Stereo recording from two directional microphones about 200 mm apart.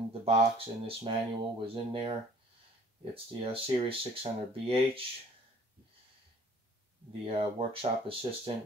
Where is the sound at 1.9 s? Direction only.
25° right (ahead or behind).